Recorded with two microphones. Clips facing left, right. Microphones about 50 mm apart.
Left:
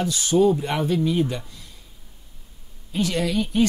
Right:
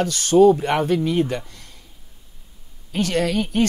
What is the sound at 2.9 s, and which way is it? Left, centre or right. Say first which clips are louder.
Speech: right 2 dB; right.